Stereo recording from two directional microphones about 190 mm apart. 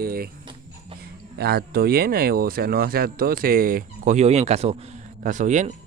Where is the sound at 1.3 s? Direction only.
55° right (ahead or behind).